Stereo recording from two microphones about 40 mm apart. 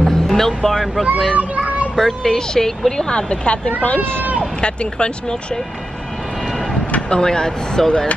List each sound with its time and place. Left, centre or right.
0.0 s speech: centre
1.3 s children playing: right
2.0 s speech: centre
3.0 s speech: left
7.0 s speech: left